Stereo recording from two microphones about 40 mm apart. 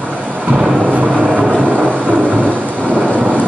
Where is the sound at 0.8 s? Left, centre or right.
Right.